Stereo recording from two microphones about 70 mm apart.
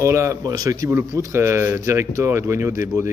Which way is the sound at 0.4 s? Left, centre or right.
Right.